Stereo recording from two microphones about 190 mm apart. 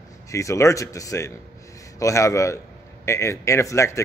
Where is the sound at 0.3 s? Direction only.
15° left (ahead or behind).